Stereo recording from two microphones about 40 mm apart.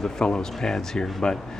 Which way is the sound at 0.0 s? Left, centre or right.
Centre.